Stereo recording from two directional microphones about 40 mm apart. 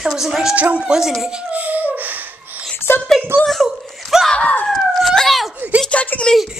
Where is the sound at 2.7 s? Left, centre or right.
Left.